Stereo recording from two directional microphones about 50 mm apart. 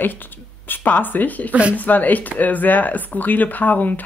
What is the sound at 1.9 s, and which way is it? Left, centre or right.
Speech, left.